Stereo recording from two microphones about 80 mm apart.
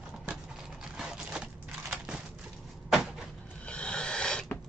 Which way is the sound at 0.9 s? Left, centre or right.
Centre.